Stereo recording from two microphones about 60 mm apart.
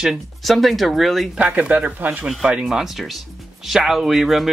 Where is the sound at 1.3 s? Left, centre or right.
Right.